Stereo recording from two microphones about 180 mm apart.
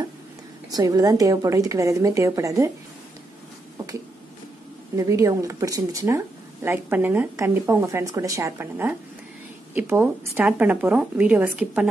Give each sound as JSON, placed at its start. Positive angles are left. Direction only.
{"t": 0.7, "sound": "a woman's voice", "side_deg": -20}
{"t": 4.9, "sound": "speech", "side_deg": -20}